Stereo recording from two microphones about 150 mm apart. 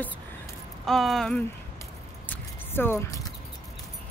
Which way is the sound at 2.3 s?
15° left (ahead or behind).